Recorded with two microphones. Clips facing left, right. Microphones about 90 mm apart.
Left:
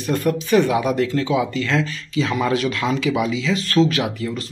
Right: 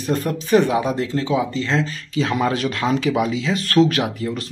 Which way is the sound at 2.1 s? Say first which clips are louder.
Even; 45° right (ahead or behind).